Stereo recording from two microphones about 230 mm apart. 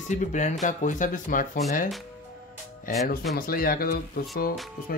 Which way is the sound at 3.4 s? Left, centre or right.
Left.